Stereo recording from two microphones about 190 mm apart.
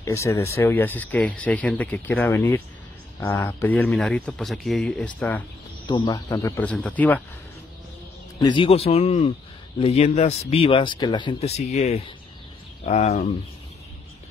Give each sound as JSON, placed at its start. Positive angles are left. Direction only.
{"t": 0.0, "sound": "speech", "side_deg": 15}
{"t": 5.9, "sound": "speech", "side_deg": 25}
{"t": 8.4, "sound": "speech", "side_deg": 25}